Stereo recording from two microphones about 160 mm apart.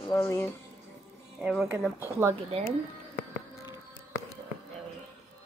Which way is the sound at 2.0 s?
15° right (ahead or behind).